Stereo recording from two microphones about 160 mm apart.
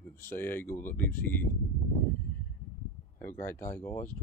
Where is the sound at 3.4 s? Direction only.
15° left (ahead or behind).